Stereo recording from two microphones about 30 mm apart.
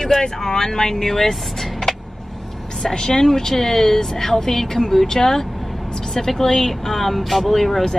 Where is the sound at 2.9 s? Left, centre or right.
Left.